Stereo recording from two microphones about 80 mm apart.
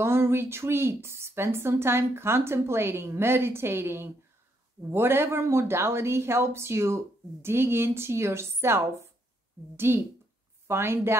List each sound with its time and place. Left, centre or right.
0.0 s speech: right